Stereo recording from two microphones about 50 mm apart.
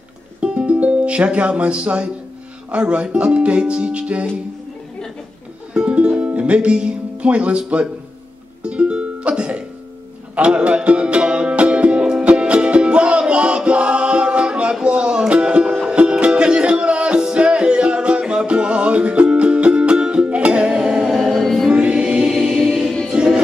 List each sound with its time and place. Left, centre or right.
0.4 s music: right
5.7 s music: right; by 21.6 s centre
21.6 s music: centre
22.2 s choir: centre
23.0 s music: centre